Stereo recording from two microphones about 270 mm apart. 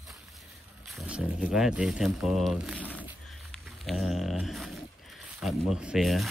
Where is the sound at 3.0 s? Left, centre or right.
Centre.